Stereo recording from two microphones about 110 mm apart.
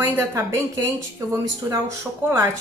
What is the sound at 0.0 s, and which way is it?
Speech, 20° right (ahead or behind).